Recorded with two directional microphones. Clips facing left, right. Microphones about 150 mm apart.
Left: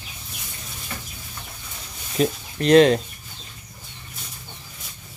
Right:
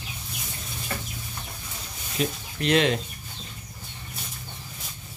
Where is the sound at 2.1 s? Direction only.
40° left (ahead or behind).